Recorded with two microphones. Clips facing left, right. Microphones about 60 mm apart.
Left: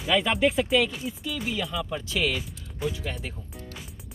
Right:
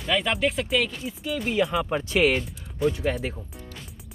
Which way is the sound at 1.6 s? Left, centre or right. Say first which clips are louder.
Right 7 dB; right.